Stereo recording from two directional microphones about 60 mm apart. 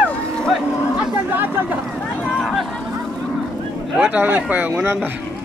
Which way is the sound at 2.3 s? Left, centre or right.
Centre.